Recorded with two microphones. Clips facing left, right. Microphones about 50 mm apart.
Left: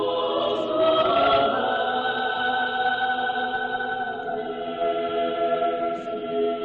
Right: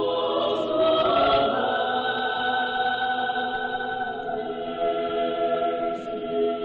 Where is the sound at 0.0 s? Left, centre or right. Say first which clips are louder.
Even; centre.